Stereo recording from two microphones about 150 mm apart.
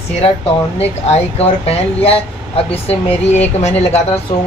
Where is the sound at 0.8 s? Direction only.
45° left (ahead or behind).